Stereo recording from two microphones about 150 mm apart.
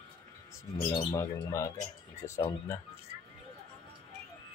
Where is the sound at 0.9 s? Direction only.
35° left (ahead or behind).